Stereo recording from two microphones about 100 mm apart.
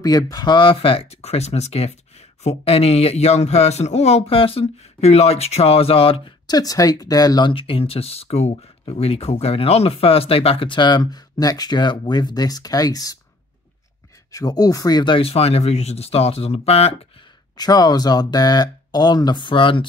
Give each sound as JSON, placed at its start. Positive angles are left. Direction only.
{"t": 0.0, "sound": "speech", "side_deg": 40}
{"t": 6.4, "sound": "speech", "side_deg": 40}
{"t": 14.3, "sound": "speech", "side_deg": 40}
{"t": 15.0, "sound": "speech", "side_deg": 70}
{"t": 17.6, "sound": "speech", "side_deg": 40}